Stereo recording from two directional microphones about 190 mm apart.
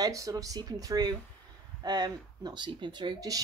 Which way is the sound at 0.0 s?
20° right (ahead or behind).